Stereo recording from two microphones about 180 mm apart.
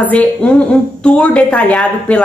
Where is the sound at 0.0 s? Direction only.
10° left (ahead or behind).